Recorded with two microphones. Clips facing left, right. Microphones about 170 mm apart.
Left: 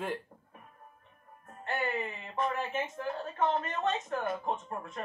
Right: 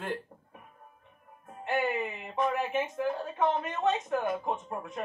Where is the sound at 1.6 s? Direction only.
15° right (ahead or behind).